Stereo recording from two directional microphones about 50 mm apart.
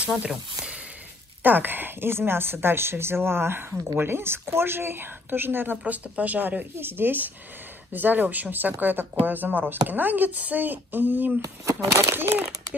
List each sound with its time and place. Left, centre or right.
0.0 s speech: right
1.4 s a woman's voice: right
6.1 s speech: right
11.6 s speech: right
12.1 s a woman's voice: right